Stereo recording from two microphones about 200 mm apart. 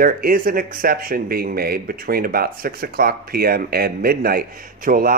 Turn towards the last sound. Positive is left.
turn(degrees=-45)  # may be behind; listen again after turning